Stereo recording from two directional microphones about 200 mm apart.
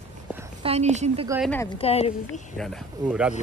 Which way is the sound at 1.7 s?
30° left (ahead or behind).